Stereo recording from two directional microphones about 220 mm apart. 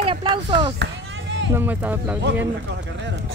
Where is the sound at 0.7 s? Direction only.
55° right (ahead or behind).